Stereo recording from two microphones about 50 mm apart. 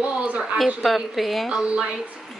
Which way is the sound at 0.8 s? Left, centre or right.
Centre.